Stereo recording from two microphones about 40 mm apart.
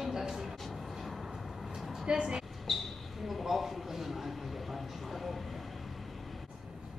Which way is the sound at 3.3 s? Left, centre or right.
Centre.